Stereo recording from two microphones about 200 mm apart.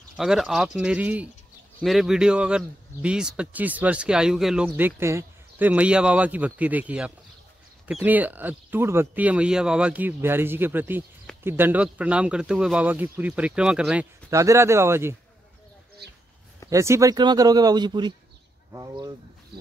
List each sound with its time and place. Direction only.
0.1 s speech: centre (ahead or behind)
14.3 s speech: 15° right (ahead or behind)
16.0 s a sound: 55° right (ahead or behind)
16.7 s speech: 15° right (ahead or behind)
19.5 s snake: 55° right (ahead or behind)